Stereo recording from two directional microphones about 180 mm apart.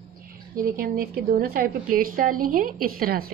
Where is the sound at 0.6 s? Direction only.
55° right (ahead or behind).